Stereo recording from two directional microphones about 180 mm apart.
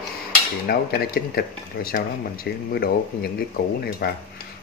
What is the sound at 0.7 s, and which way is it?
Speech, 55° left (ahead or behind).